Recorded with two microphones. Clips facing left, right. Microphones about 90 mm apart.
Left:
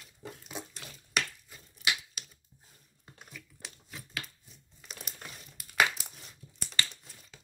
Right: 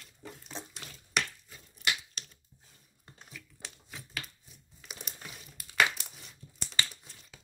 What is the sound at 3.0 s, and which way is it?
Computer keyboard, centre (ahead or behind).